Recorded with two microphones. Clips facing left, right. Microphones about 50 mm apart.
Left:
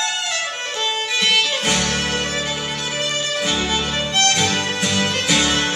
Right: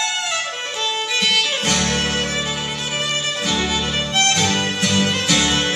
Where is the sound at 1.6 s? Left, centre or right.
Centre.